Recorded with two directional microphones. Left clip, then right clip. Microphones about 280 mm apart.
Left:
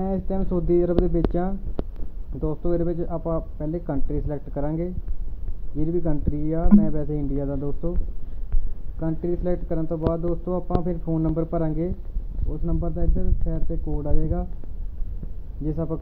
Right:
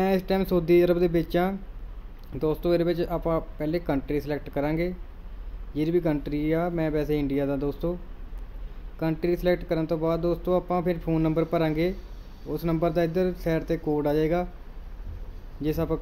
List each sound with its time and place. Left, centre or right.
0.0 s speech: centre
0.4 s speech: centre
0.7 s speech: centre
2.9 s speech: centre
9.0 s speech: centre
15.6 s speech: centre